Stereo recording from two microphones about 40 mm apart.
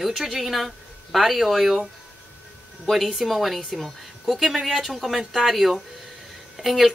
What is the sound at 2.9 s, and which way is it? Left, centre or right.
A woman's voice, centre.